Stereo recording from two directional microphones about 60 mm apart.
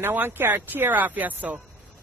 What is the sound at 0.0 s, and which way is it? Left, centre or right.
Speech, right.